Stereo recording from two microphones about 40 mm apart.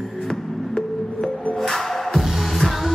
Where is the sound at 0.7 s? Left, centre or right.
Centre.